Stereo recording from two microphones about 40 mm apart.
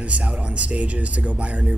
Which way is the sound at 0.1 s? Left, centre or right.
Right.